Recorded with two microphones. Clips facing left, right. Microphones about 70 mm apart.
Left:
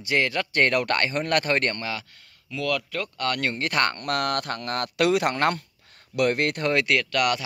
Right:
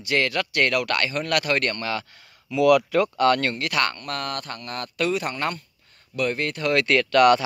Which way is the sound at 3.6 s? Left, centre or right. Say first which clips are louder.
Even; left.